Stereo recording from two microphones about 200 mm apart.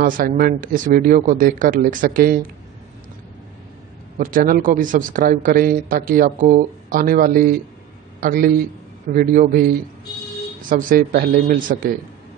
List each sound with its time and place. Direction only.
0.0 s a man's voice: 40° right (ahead or behind)
4.2 s a man's voice: 45° right (ahead or behind)